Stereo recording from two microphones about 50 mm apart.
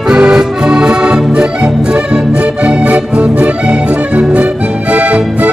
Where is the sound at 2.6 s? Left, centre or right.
Right.